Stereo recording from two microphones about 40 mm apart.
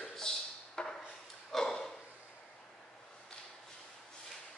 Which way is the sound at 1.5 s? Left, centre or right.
Centre.